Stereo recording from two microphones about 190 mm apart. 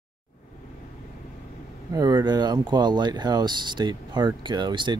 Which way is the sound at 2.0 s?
20° right (ahead or behind).